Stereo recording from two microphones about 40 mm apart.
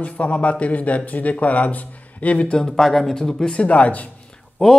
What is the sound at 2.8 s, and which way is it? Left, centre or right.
Speech, centre.